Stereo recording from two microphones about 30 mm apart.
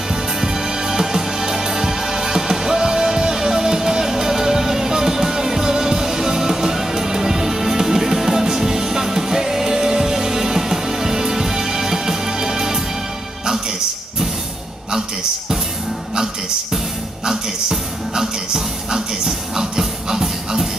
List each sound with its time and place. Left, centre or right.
0.1 s music: centre
17.2 s music: centre